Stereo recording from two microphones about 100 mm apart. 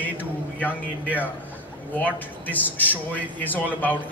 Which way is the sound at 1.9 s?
15° left (ahead or behind).